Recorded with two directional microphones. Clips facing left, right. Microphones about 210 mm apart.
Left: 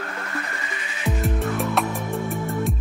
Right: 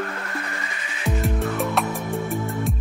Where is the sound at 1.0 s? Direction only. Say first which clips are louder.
Even; centre (ahead or behind).